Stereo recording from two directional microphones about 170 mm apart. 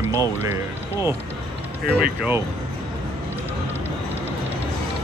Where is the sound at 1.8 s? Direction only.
65° right (ahead or behind).